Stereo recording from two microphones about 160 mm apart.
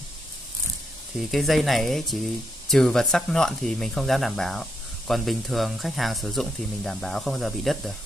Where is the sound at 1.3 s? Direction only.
Centre (ahead or behind).